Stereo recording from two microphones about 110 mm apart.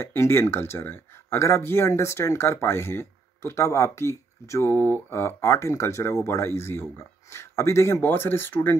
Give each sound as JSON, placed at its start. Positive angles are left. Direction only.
{"t": 0.0, "sound": "speech", "side_deg": 20}